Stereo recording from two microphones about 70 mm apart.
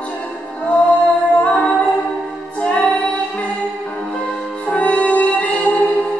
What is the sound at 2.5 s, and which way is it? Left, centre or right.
Music, centre.